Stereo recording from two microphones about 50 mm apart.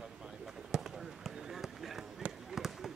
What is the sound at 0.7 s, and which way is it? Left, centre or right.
Basketball bounce, centre.